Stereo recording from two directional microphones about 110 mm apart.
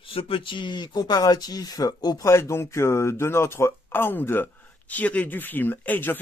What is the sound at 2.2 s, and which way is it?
Speech, 25° left (ahead or behind).